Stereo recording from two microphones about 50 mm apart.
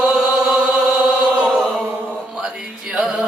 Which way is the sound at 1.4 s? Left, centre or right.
Centre.